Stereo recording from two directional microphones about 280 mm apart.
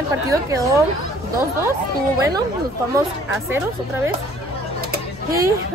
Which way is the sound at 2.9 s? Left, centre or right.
Centre.